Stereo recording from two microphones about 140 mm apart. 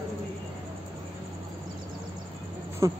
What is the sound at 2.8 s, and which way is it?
Speech, 20° right (ahead or behind).